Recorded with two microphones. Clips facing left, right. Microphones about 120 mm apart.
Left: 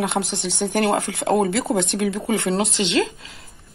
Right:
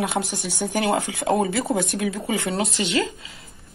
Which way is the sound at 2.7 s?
90° left.